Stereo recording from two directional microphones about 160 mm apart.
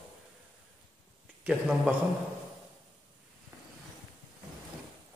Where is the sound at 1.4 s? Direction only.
5° right (ahead or behind).